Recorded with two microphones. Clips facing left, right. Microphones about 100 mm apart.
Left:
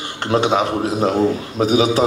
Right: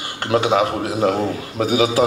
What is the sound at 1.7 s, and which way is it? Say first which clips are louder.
Speech: left 1 dB; 25° left (ahead or behind).